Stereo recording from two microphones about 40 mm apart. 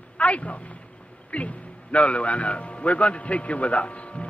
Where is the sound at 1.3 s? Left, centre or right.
Left.